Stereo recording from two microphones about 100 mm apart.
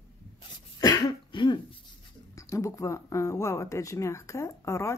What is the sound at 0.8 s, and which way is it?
Cough, 35° left (ahead or behind).